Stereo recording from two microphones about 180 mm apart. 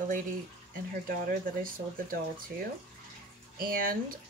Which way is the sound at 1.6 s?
50° right (ahead or behind).